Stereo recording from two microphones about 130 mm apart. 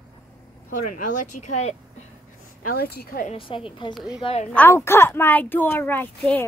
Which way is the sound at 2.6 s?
85° left.